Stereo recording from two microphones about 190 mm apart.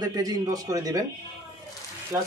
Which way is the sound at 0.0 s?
20° right (ahead or behind).